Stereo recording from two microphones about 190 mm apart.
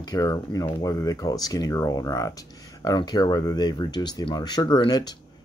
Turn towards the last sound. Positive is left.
turn(degrees=20)  # may be behind; listen again after turning